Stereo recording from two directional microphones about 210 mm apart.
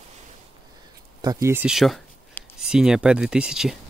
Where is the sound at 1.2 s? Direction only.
15° right (ahead or behind).